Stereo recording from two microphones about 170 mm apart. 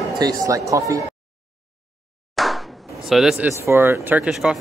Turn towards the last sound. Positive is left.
turn(degrees=-5)  # may be behind; listen again after turning